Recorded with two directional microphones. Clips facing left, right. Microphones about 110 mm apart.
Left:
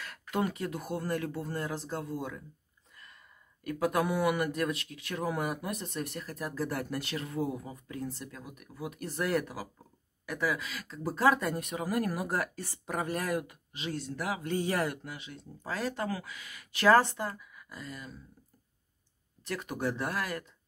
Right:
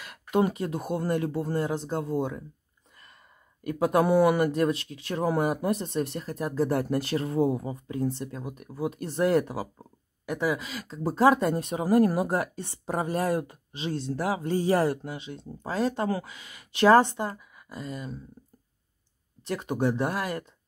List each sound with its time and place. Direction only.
0.0 s speech: 20° right (ahead or behind)
3.6 s speech: 25° right (ahead or behind)
19.4 s speech: 25° right (ahead or behind)